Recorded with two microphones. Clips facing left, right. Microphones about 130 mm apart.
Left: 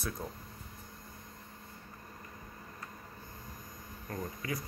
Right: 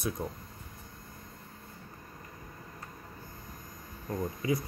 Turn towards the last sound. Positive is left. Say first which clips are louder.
# right 7 dB
turn(degrees=-20)  # may be behind; listen again after turning